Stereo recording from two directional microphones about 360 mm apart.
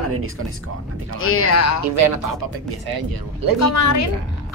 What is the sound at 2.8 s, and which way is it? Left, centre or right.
Speech, right.